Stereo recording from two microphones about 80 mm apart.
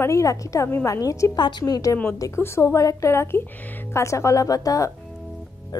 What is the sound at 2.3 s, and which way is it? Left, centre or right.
A woman's voice, left.